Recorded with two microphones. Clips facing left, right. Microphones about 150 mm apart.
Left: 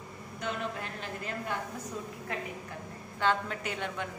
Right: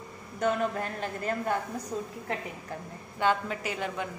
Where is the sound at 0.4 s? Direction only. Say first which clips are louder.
Right 8 dB; 45° right (ahead or behind).